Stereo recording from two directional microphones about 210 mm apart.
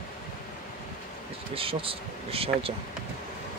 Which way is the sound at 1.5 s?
25° right (ahead or behind).